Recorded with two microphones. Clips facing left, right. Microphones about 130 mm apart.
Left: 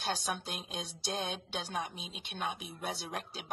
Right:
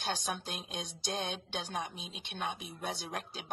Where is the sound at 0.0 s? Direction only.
Centre (ahead or behind).